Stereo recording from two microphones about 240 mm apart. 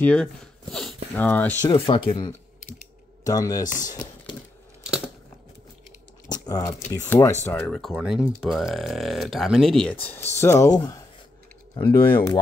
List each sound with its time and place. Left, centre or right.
0.0 s speech: centre
1.7 s speech: left
4.8 s biting: centre
6.2 s a sound: centre
6.9 s speech: centre